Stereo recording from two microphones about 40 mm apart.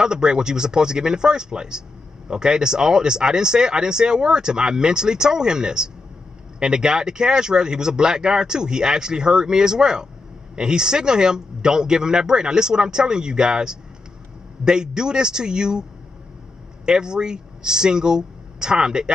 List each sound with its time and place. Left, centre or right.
0.0 s speech: centre
16.8 s speech: centre